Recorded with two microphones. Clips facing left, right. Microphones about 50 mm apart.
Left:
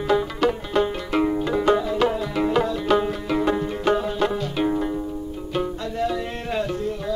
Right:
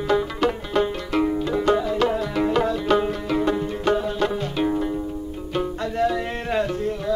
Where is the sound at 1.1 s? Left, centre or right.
Centre.